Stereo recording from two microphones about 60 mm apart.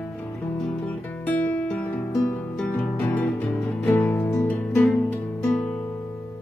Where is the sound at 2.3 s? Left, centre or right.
Centre.